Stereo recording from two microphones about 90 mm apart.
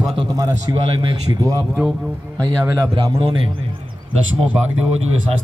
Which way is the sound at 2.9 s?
80° right.